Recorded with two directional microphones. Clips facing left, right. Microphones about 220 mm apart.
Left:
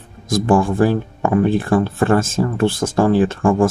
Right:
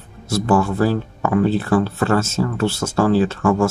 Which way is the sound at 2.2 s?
50° left (ahead or behind).